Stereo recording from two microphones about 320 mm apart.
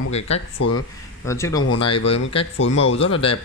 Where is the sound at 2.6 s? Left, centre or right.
Left.